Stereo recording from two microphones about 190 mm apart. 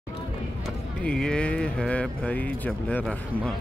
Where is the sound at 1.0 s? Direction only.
5° left (ahead or behind).